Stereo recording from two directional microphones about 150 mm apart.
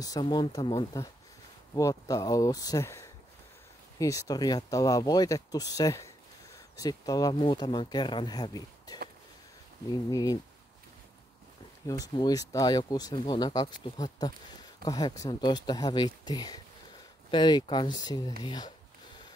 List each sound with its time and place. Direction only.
0.0 s speech: 25° left (ahead or behind)
10.1 s speech: 25° left (ahead or behind)
11.9 s speech: 25° left (ahead or behind)